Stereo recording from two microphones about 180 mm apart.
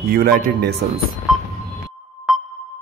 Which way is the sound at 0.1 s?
60° right (ahead or behind).